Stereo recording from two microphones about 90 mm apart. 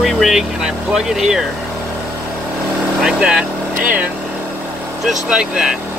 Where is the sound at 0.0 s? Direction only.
Centre (ahead or behind).